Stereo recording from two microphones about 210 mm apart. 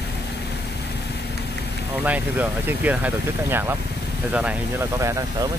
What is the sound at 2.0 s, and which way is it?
Speech, 5° right (ahead or behind).